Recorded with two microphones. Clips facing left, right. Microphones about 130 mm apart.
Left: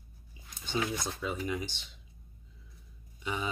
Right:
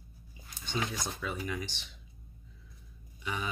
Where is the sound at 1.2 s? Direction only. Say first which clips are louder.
Left 2 dB; 20° left (ahead or behind).